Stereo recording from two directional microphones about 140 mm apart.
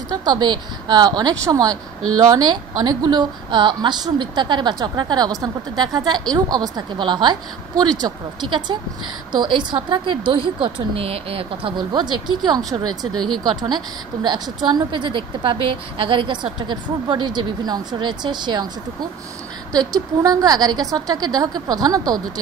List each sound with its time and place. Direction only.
0.1 s a woman's voice: 30° right (ahead or behind)